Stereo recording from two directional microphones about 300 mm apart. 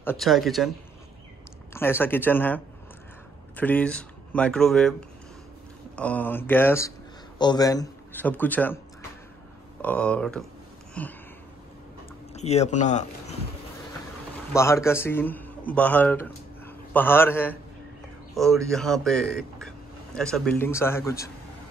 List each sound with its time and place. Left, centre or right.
0.0 s speech: centre
1.7 s speech: centre
5.9 s a man's voice: centre
9.8 s speech: centre
12.4 s speech: left
14.5 s a man's voice: centre